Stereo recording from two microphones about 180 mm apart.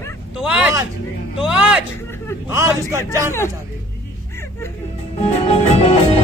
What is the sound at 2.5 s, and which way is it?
Speech, 15° right (ahead or behind).